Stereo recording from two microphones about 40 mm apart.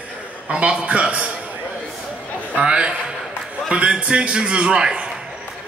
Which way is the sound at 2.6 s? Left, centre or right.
Right.